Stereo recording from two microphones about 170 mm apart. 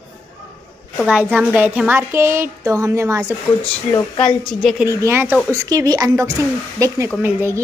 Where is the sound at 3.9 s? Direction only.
30° left (ahead or behind).